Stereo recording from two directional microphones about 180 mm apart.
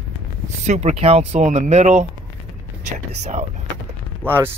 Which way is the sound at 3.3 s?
40° right (ahead or behind).